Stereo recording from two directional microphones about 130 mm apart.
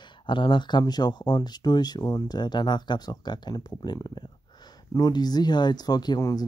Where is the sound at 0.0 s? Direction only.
35° left (ahead or behind).